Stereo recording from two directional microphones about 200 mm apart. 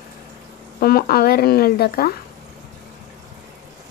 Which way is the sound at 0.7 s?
50° left (ahead or behind).